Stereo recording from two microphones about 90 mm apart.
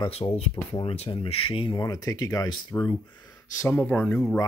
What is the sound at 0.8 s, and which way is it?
Speech, 90° left.